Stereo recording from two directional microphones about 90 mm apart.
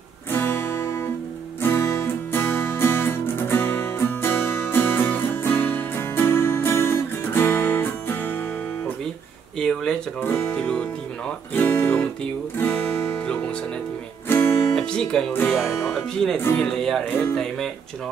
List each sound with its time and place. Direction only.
0.3 s guitar: 25° left (ahead or behind)
1.6 s music: 25° left (ahead or behind)
9.6 s a sound: 5° left (ahead or behind)
10.2 s music: 25° left (ahead or behind)
11.5 s guitar: 20° left (ahead or behind)
12.5 s music: 25° left (ahead or behind)
14.3 s music: 25° left (ahead or behind)
14.8 s music: 10° left (ahead or behind)
15.5 s speech: centre (ahead or behind)
17.0 s music: 25° left (ahead or behind)